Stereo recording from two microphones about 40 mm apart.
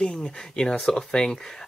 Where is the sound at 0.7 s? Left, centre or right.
Centre.